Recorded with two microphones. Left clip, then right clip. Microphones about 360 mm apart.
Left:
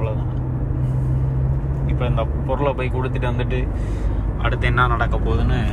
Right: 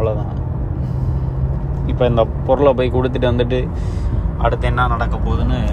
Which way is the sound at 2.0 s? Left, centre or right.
Right.